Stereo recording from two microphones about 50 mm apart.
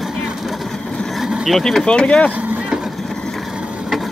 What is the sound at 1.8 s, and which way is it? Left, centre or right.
Speech, centre.